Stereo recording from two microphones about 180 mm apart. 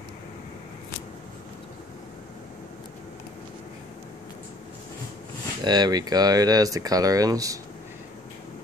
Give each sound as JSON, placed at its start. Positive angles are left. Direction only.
{"t": 5.6, "sound": "speech", "side_deg": -25}